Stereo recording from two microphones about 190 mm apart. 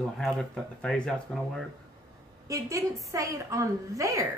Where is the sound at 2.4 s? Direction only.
15° right (ahead or behind).